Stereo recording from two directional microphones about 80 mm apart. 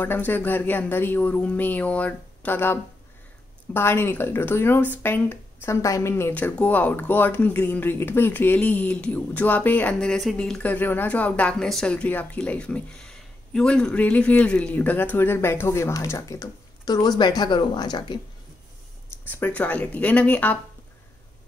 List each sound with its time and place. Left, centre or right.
0.0 s speech: left
5.8 s a woman's voice: left
6.3 s speech: centre
9.9 s speech: centre
10.6 s speech: left
19.2 s speech: left